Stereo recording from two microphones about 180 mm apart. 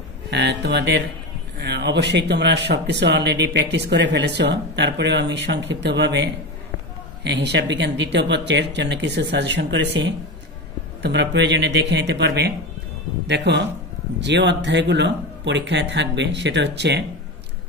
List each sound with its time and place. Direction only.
0.3 s speech: 70° right (ahead or behind)